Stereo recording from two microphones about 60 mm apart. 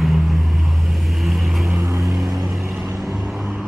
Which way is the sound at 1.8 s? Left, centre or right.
Right.